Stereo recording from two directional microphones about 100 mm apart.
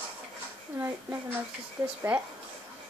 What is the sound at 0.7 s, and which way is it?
A woman's voice, 25° right (ahead or behind).